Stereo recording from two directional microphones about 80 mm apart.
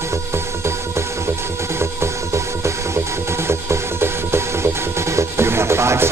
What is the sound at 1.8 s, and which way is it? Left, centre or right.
Music, right.